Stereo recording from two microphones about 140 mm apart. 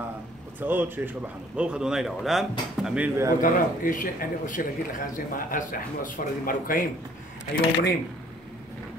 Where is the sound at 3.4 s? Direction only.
75° left (ahead or behind).